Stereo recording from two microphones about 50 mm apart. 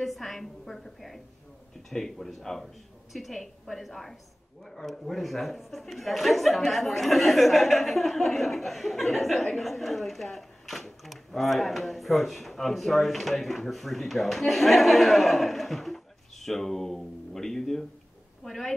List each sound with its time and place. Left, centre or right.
0.0 s speech: centre